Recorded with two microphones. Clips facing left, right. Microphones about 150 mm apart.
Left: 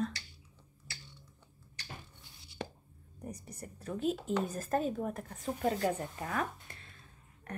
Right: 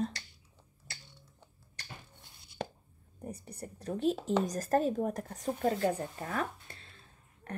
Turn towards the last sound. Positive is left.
turn(degrees=-30)  # may be behind; listen again after turning